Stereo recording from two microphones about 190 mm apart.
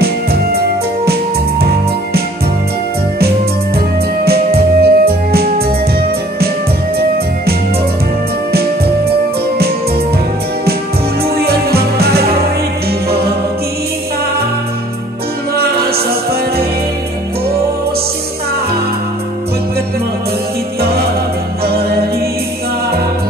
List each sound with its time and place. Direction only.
0.0 s music: 55° right (ahead or behind)
4.2 s music: 55° right (ahead or behind)
8.5 s music: 55° right (ahead or behind)
11.2 s music: 55° right (ahead or behind)
15.5 s music: 55° right (ahead or behind)